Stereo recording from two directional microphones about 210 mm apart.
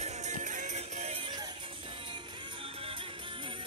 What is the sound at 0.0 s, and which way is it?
Music, 35° right (ahead or behind).